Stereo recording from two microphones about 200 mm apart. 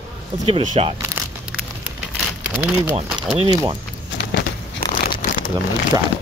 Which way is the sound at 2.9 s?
30° right (ahead or behind).